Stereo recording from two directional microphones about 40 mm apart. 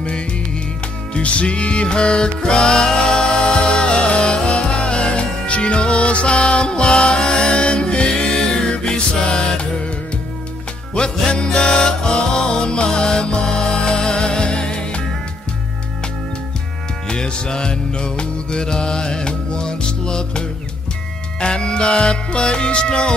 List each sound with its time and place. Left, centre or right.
1.1 s music: left
11.0 s music: left
17.1 s music: left